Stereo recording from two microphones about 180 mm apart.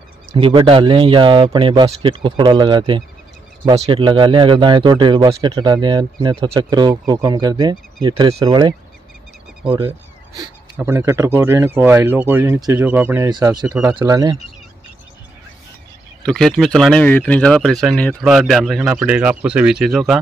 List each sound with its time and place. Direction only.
0.4 s speech: 30° right (ahead or behind)
9.8 s a man's voice: 15° right (ahead or behind)
16.3 s speech: centre (ahead or behind)